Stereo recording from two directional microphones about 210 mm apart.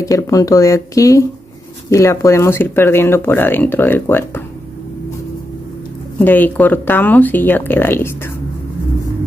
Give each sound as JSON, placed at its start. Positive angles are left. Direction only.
{"t": 0.0, "sound": "speech", "side_deg": 15}
{"t": 6.1, "sound": "speech", "side_deg": 10}